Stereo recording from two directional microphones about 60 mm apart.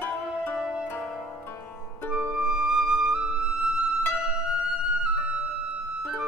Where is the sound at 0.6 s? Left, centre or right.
Centre.